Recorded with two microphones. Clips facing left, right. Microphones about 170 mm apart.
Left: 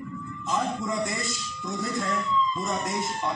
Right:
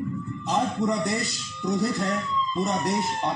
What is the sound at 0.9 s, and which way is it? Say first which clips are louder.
Music: right 3 dB; 70° right (ahead or behind).